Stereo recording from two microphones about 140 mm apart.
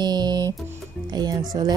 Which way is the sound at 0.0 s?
30° right (ahead or behind).